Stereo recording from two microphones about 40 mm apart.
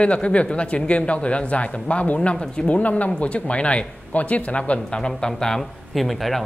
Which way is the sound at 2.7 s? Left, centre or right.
Left.